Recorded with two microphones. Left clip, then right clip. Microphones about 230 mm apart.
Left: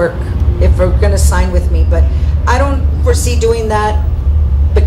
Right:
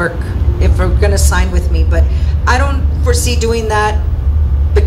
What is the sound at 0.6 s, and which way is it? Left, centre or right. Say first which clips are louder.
A woman's voice: left 3 dB; right.